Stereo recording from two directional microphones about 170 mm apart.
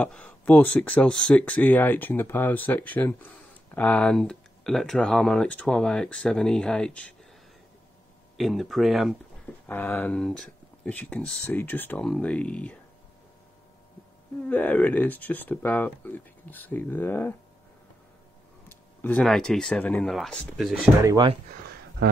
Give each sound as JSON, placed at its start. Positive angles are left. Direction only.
{"t": 0.0, "sound": "speech", "side_deg": 10}
{"t": 8.4, "sound": "speech", "side_deg": 0}
{"t": 9.7, "sound": "speech", "side_deg": 10}
{"t": 14.5, "sound": "speech", "side_deg": 10}
{"t": 18.7, "sound": "speech", "side_deg": 10}
{"t": 21.0, "sound": "speech", "side_deg": -20}